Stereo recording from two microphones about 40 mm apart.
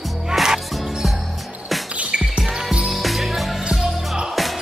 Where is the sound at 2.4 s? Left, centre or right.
Centre.